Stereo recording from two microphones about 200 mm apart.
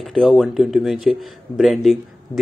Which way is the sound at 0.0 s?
Centre (ahead or behind).